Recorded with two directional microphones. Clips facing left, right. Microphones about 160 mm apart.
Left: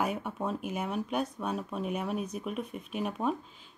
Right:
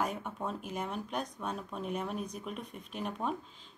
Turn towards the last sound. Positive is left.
turn(degrees=10)  # may be behind; listen again after turning